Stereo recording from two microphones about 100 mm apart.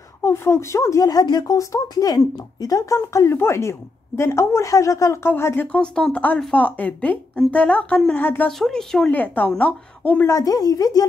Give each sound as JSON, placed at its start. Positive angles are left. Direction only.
{"t": 0.2, "sound": "a woman's voice", "side_deg": 25}
{"t": 5.7, "sound": "speech", "side_deg": 10}
{"t": 8.5, "sound": "speech", "side_deg": 5}
{"t": 9.1, "sound": "speech", "side_deg": 15}
{"t": 10.2, "sound": "speech", "side_deg": 35}